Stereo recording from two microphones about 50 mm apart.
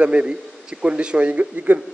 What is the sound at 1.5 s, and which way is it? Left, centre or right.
Speech, right.